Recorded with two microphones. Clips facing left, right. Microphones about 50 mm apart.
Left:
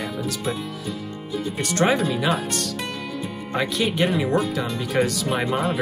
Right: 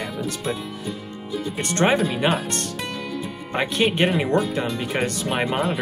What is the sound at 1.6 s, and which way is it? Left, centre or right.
Speech, right.